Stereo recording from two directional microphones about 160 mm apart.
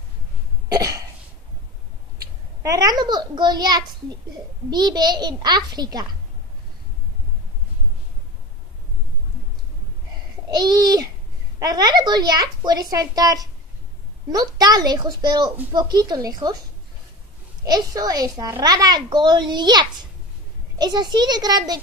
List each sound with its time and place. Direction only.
0.7 s cough: 25° right (ahead or behind)
2.6 s a child's voice: 20° right (ahead or behind)
10.5 s a child's voice: 25° right (ahead or behind)
17.6 s a child's voice: 25° right (ahead or behind)